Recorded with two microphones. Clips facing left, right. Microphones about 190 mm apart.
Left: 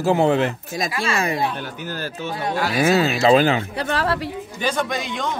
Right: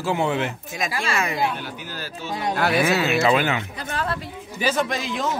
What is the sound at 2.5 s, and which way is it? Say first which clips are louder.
Speech: right 1 dB; 60° right (ahead or behind).